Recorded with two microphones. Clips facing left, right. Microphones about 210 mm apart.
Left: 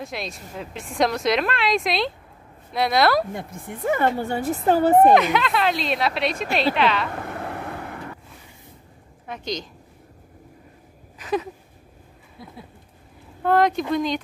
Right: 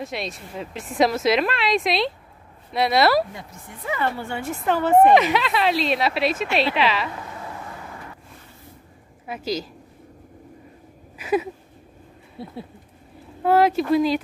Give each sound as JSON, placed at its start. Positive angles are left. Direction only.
{"t": 0.0, "sound": "speech", "side_deg": 0}
{"t": 3.3, "sound": "a woman's voice", "side_deg": 55}
{"t": 4.2, "sound": "a woman's voice", "side_deg": 40}
{"t": 5.1, "sound": "speech", "side_deg": 0}
{"t": 7.1, "sound": "vehicle", "side_deg": 60}
{"t": 9.3, "sound": "speech", "side_deg": -5}
{"t": 11.1, "sound": "a sound", "side_deg": -10}
{"t": 12.4, "sound": "speech", "side_deg": -30}
{"t": 13.4, "sound": "speech", "side_deg": -5}